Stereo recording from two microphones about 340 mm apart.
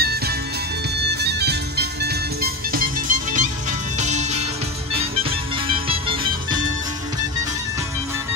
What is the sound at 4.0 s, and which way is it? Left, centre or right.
Music, centre.